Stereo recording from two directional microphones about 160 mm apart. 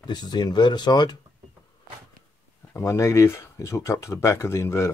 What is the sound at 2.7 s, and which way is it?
Speech, 20° left (ahead or behind).